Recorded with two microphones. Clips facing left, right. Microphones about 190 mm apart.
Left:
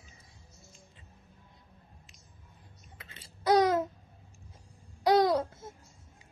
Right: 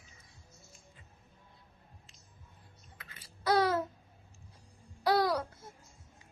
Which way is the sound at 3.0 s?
25° left (ahead or behind).